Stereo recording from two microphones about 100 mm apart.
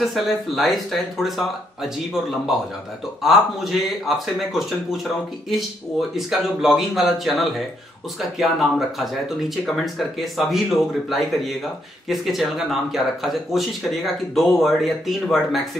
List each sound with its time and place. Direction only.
0.0 s speech: centre (ahead or behind)
3.2 s speech: centre (ahead or behind)